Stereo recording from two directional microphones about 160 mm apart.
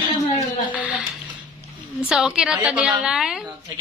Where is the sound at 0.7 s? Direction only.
10° right (ahead or behind).